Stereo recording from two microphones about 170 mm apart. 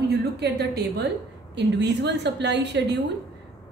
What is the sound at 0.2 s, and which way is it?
Speech, 75° right (ahead or behind).